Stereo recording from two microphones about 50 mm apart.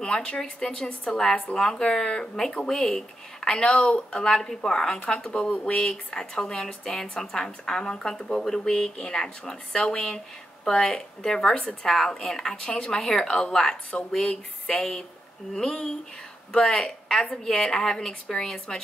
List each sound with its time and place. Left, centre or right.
0.0 s speech: centre